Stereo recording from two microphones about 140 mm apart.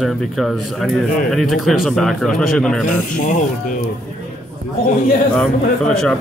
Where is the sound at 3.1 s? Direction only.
70° left (ahead or behind).